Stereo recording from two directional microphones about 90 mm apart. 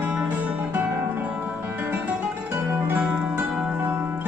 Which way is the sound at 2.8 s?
15° right (ahead or behind).